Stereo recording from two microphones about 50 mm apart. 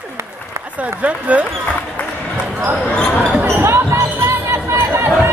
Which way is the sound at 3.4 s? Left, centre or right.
Right.